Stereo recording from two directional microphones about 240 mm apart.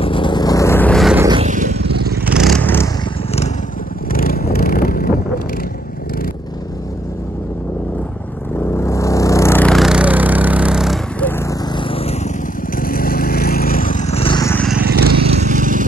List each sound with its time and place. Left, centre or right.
0.0 s vehicle: left; by 1.2 s centre
1.4 s a sound: right
2.3 s vehicle: centre
4.1 s vehicle: left
8.7 s vehicle: centre
11.7 s vehicle: left
12.7 s vehicle: left; by 14.7 s centre
15.2 s vehicle: right